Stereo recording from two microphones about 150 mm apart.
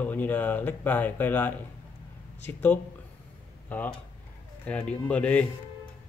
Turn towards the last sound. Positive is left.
turn(degrees=10)  # may be behind; listen again after turning